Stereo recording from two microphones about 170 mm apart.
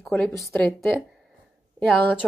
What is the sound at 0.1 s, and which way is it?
Speech, 15° left (ahead or behind).